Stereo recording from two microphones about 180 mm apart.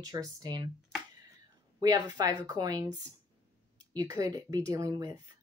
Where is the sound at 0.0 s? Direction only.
20° right (ahead or behind).